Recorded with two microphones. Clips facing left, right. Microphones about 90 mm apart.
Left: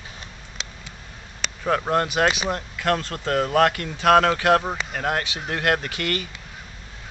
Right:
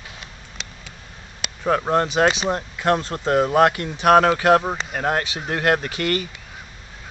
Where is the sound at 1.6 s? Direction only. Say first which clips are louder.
Right 2 dB; 10° right (ahead or behind).